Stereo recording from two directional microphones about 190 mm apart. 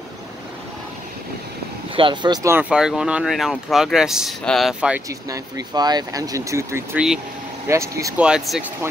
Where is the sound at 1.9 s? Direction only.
25° right (ahead or behind); by 5.0 s 5° right (ahead or behind).